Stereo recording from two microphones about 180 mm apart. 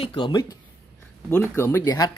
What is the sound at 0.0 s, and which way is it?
Speech, 30° left (ahead or behind).